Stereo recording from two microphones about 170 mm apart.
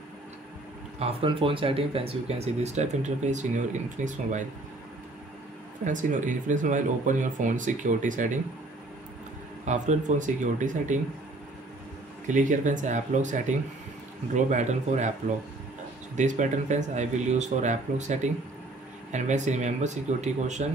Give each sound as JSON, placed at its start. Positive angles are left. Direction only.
{"t": 0.9, "sound": "speech", "side_deg": -35}
{"t": 5.9, "sound": "speech", "side_deg": -50}
{"t": 9.7, "sound": "speech", "side_deg": -45}
{"t": 12.3, "sound": "speech", "side_deg": -50}
{"t": 16.2, "sound": "speech", "side_deg": -45}